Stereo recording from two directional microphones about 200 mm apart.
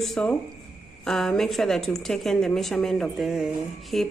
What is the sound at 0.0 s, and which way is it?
A woman's voice, 5° left (ahead or behind).